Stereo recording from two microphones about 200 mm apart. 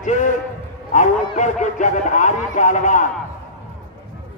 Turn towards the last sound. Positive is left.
turn(degrees=40)  # may be behind; listen again after turning